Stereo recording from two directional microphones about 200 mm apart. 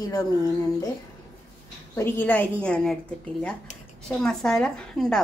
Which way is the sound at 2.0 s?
10° left (ahead or behind).